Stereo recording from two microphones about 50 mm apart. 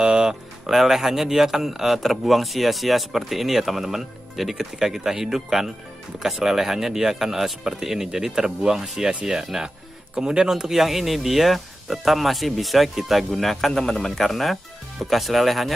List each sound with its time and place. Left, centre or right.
0.0 s music: centre
0.7 s speech: centre